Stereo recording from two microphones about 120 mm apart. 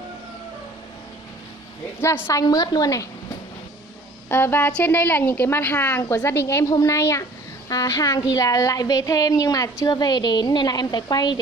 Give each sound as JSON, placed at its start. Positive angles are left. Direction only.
{"t": 2.0, "sound": "a woman's voice", "side_deg": 20}
{"t": 4.3, "sound": "a woman's voice", "side_deg": 20}